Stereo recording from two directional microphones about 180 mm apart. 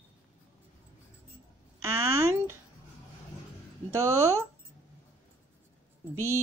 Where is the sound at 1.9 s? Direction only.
15° right (ahead or behind).